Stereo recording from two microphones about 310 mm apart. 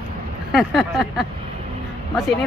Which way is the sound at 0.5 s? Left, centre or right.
Centre.